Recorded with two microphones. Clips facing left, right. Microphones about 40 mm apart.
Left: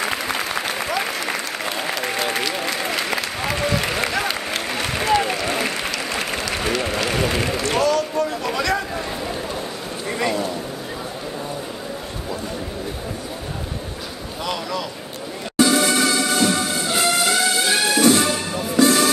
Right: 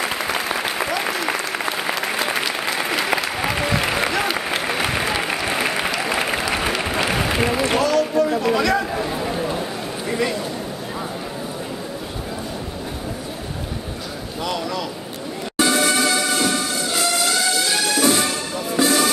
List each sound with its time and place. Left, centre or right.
0.2 s applause: centre
7.8 s a sound: centre
10.0 s a sound: centre
14.4 s vehicle: centre
15.6 s music: centre
16.8 s music: left
18.0 s music: centre